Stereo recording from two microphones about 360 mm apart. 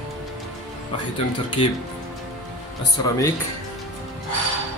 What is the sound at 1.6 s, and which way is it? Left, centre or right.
Speech, centre.